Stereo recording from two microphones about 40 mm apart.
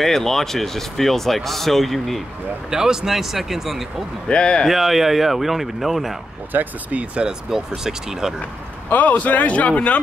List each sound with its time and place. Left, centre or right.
0.0 s speech: centre
2.7 s speech: centre
4.3 s speech: left
4.6 s speech: centre
6.5 s speech: right
7.5 s speech: centre
8.8 s speech: left